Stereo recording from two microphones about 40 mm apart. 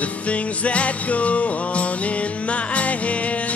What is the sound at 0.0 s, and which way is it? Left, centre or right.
Music, left.